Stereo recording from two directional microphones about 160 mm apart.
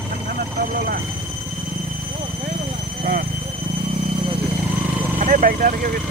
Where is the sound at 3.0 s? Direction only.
55° right (ahead or behind).